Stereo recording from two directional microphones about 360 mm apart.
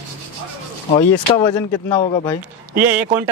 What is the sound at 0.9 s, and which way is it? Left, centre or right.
Speech, centre.